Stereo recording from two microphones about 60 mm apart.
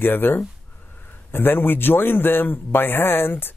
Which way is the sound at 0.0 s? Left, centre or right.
Left.